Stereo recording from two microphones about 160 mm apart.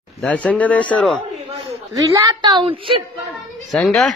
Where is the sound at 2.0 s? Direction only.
20° right (ahead or behind).